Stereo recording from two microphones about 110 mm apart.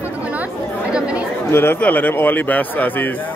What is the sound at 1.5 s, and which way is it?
A man's voice, 20° left (ahead or behind).